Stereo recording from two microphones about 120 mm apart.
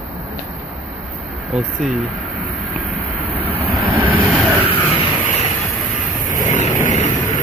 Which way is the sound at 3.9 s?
15° right (ahead or behind).